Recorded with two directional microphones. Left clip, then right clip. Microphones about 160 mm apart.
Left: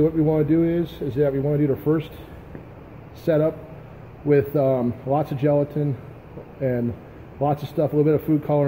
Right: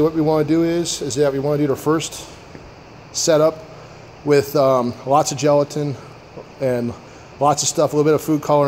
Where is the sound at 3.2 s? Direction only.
15° right (ahead or behind).